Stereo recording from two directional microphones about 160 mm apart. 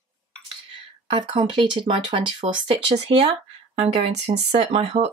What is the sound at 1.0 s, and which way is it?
Speech, 30° right (ahead or behind).